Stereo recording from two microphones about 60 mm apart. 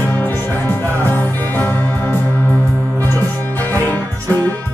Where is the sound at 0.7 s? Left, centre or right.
Left.